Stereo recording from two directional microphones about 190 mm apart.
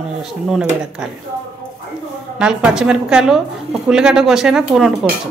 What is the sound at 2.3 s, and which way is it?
A woman's voice, 5° right (ahead or behind).